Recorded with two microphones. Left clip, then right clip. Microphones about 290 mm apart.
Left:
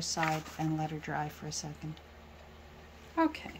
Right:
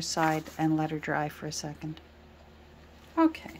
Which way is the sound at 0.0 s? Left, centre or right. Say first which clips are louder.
Right 5 dB; centre.